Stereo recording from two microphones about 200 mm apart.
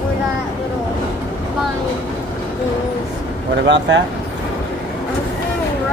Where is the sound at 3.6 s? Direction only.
65° right (ahead or behind).